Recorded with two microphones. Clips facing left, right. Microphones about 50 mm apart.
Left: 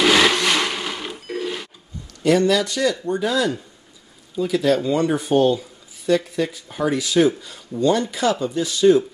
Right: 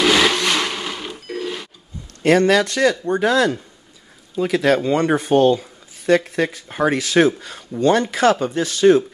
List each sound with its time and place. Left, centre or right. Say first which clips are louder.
0.0 s blender: even; centre
2.2 s speech: right 3 dB; right